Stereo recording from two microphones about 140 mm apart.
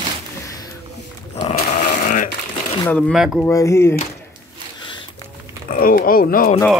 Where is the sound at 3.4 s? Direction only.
20° left (ahead or behind).